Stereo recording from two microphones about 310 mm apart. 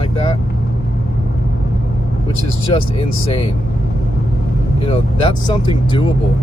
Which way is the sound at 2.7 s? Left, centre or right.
Centre.